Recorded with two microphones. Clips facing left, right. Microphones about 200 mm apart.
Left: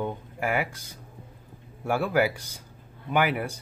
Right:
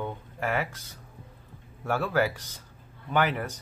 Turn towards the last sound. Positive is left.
turn(degrees=10)  # may be behind; listen again after turning